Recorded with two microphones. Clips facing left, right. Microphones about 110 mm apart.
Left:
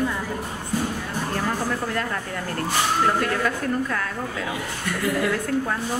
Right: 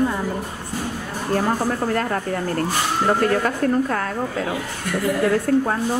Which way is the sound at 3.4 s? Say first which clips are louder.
Right 5 dB; 40° right (ahead or behind).